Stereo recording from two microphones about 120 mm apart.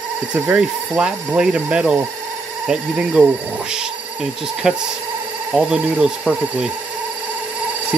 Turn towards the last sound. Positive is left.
turn(degrees=-5)  # may be behind; listen again after turning